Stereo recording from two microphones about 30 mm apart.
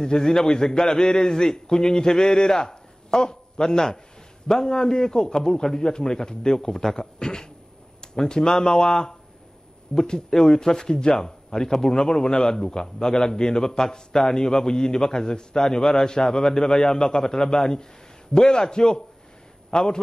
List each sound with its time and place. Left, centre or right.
0.0 s a man's voice: left